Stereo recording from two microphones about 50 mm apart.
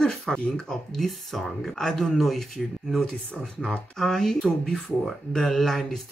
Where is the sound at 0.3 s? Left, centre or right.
Centre.